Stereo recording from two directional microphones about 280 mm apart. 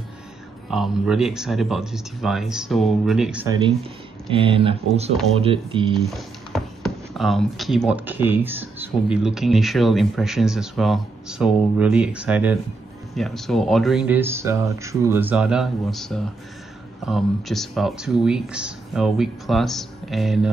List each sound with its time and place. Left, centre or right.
0.7 s speech: centre
4.3 s speech: centre
6.0 s speech: centre